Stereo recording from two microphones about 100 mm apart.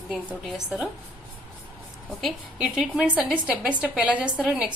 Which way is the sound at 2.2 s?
10° right (ahead or behind).